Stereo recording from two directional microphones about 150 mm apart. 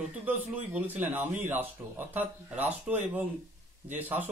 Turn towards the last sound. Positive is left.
turn(degrees=-15)  # may be behind; listen again after turning